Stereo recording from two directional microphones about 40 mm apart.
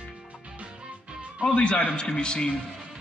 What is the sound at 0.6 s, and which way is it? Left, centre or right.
Music, right.